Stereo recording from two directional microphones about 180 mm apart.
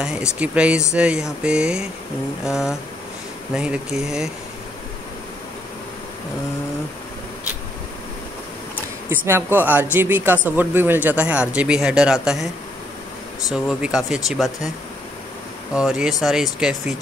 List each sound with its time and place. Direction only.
0.0 s speech: 5° right (ahead or behind)
9.1 s speech: 10° right (ahead or behind)
13.5 s speech: 5° right (ahead or behind)
15.7 s speech: 5° right (ahead or behind)